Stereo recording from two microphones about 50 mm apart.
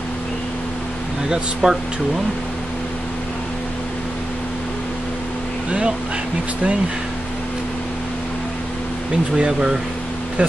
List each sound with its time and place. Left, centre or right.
1.3 s speech: centre
5.7 s speech: right
9.4 s speech: centre